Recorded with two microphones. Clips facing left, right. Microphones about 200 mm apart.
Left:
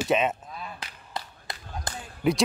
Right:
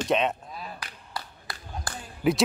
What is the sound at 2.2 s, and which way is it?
Speech, centre (ahead or behind).